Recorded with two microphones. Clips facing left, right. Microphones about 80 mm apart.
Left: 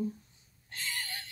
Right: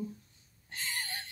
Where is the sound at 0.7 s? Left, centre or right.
Right.